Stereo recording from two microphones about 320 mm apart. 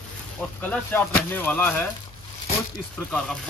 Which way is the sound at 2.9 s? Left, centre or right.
Centre.